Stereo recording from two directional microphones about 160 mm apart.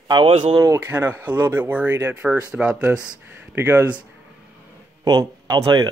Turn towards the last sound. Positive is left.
turn(degrees=-25)  # may be behind; listen again after turning